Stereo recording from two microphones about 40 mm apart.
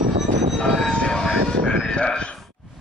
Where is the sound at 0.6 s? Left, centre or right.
Left.